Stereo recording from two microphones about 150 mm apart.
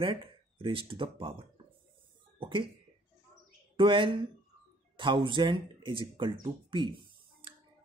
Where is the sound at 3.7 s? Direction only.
35° right (ahead or behind).